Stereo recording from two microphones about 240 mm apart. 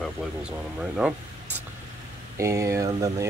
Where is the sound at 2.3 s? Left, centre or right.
Centre.